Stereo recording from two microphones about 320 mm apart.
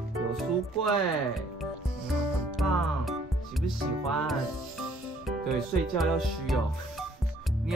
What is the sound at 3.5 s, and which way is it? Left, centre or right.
Speech, centre.